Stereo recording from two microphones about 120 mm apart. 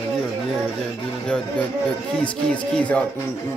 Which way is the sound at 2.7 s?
10° left (ahead or behind).